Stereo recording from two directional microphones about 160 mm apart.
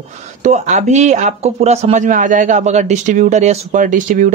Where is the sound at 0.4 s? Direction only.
50° right (ahead or behind).